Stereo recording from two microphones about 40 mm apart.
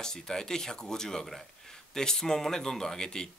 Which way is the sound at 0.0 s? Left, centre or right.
Centre.